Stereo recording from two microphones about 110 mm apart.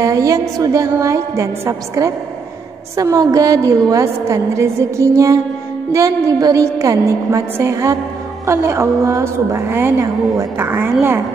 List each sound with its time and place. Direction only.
0.0 s a woman's voice: 30° right (ahead or behind)